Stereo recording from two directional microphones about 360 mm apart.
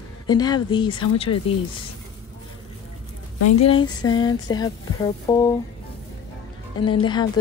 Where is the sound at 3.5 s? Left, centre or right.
Centre.